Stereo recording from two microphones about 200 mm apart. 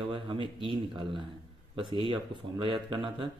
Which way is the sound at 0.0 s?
25° right (ahead or behind).